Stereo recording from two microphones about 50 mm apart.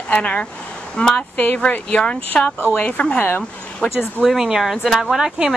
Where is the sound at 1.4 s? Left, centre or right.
Left; by 2.5 s centre.